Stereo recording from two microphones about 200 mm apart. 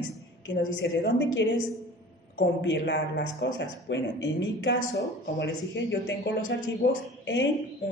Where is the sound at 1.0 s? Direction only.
60° left (ahead or behind).